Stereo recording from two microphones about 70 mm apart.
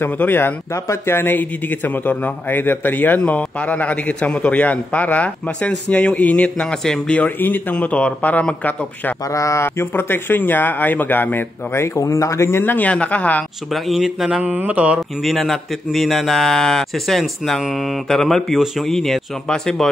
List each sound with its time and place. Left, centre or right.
0.0 s a man's voice: left; by 7.2 s centre
7.2 s a man's voice: left
9.3 s a man's voice: left; by 13.4 s centre
13.8 s speech: centre
14.4 s speech: right
15.2 s a man's voice: centre